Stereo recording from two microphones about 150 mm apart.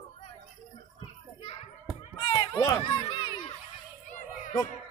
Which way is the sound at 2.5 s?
20° left (ahead or behind).